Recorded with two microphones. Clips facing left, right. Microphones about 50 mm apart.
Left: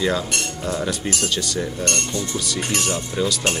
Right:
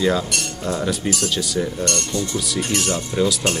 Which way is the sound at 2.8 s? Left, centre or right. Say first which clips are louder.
Right 3 dB; centre.